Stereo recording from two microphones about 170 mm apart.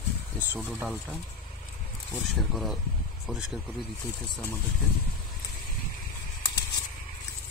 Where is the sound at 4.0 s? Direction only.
10° left (ahead or behind).